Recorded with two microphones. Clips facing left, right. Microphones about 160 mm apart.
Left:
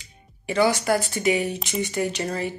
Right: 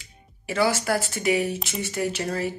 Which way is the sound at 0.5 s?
5° right (ahead or behind).